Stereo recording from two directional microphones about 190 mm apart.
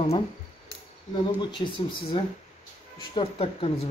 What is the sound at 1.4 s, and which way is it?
Speech, 25° left (ahead or behind).